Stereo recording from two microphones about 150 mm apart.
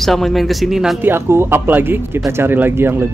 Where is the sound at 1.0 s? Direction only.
15° right (ahead or behind).